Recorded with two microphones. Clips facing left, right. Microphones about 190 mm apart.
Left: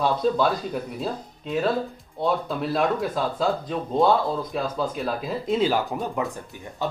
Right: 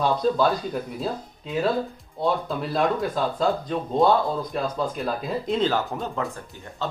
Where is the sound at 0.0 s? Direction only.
Centre (ahead or behind).